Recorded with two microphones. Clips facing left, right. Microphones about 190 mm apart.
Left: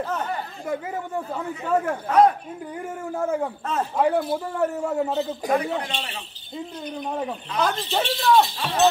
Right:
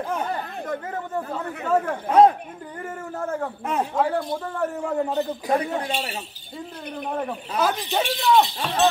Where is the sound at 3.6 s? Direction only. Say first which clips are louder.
Right 1 dB; 15° right (ahead or behind).